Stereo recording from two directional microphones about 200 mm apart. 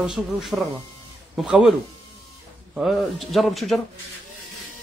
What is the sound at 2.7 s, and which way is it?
Speech, centre (ahead or behind).